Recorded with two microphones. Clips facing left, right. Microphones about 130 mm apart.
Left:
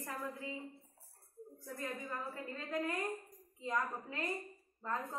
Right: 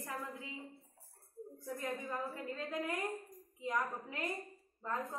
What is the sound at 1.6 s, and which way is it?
A woman's voice, 15° right (ahead or behind).